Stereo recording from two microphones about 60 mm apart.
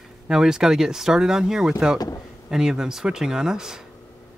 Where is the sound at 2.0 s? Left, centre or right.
Left.